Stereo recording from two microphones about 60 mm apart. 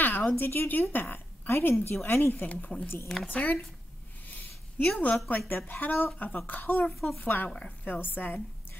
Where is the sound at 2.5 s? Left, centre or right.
Centre.